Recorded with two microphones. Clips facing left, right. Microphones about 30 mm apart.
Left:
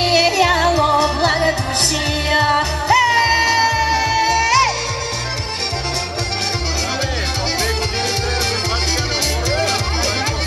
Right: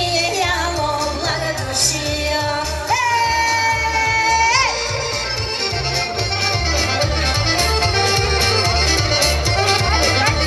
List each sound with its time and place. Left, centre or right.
0.1 s music: left
1.0 s music: left
3.2 s music: left
4.4 s music: centre
7.5 s music: right